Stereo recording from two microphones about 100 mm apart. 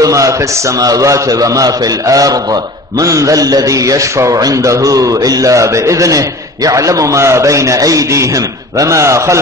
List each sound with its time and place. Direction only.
0.0 s a man's voice: 35° right (ahead or behind)